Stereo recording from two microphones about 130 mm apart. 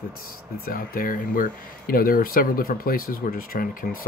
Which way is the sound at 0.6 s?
90° left.